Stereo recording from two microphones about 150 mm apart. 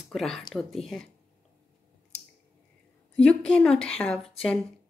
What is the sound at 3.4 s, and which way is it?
A woman's voice, 5° left (ahead or behind).